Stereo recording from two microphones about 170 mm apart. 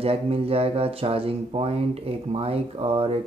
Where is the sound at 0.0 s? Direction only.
35° right (ahead or behind).